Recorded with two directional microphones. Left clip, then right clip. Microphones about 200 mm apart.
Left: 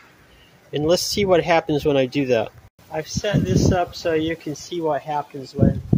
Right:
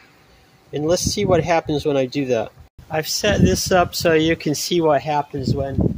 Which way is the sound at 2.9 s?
55° right (ahead or behind).